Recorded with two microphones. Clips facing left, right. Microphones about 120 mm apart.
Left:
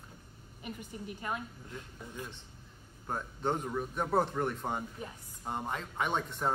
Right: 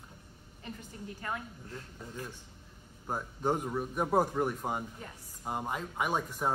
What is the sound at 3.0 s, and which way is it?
Speech, 10° right (ahead or behind).